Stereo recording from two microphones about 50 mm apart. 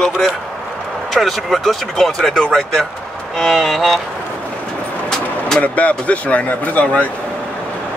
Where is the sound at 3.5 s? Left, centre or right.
Centre.